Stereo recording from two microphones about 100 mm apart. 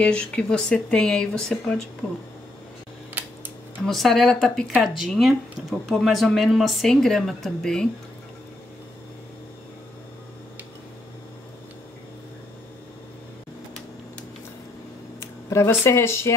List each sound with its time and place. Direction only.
0.0 s speech: 10° left (ahead or behind)
3.2 s a sound: 20° right (ahead or behind)
3.8 s speech: centre (ahead or behind)
15.1 s speech: 25° left (ahead or behind)